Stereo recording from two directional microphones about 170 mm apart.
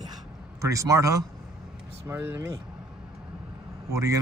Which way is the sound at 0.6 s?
20° right (ahead or behind).